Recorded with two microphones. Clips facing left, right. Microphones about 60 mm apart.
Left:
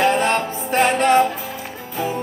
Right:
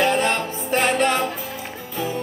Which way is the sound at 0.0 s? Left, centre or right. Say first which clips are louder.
Left 2 dB; left.